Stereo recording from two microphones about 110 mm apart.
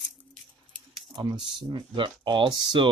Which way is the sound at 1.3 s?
5° right (ahead or behind).